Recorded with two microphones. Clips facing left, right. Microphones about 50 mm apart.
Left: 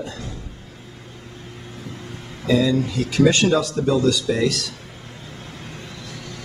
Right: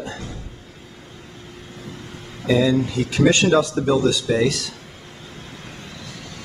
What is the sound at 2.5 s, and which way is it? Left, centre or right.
A man's voice, centre.